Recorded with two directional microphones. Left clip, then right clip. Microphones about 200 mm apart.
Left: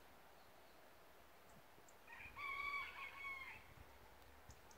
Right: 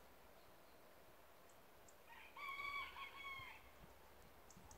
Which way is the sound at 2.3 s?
55° right (ahead or behind).